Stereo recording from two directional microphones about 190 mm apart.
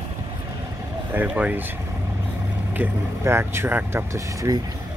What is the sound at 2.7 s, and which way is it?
Speech, 10° right (ahead or behind).